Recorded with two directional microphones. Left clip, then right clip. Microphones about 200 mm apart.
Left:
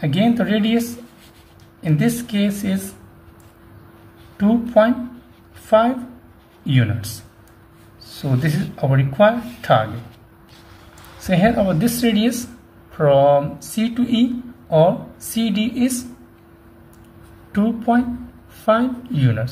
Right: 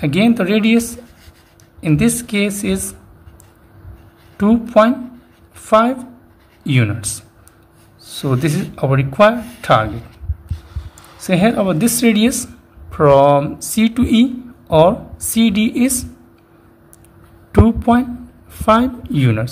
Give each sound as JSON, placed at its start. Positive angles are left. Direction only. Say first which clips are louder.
{"t": 0.0, "sound": "speech", "louder": "right 4 dB", "side_deg": -35}
{"t": 4.4, "sound": "speech", "louder": "right 3 dB", "side_deg": -35}
{"t": 8.2, "sound": "speech", "louder": "right 5 dB", "side_deg": -35}
{"t": 11.2, "sound": "speech", "louder": "right 2 dB", "side_deg": -30}
{"t": 17.5, "sound": "speech", "louder": "right 5 dB", "side_deg": -35}